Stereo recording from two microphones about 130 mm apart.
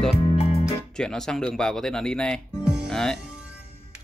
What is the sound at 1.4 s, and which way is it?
Speech, 5° left (ahead or behind).